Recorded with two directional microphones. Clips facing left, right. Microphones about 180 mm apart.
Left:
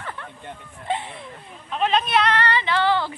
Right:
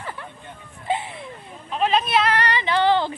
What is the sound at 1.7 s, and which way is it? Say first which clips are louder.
Speech: right 1 dB; centre (ahead or behind).